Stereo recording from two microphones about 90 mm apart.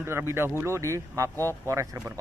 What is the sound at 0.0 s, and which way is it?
A man's voice, 30° right (ahead or behind).